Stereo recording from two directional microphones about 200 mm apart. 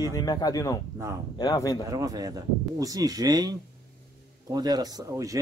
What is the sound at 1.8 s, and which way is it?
Speech, 20° right (ahead or behind).